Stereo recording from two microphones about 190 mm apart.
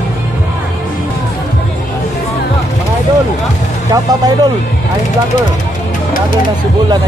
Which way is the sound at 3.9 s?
20° right (ahead or behind).